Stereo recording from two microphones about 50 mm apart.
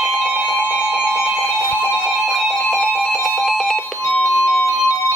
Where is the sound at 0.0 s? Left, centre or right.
Centre.